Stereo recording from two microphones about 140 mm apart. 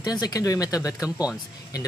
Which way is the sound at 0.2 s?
25° left (ahead or behind).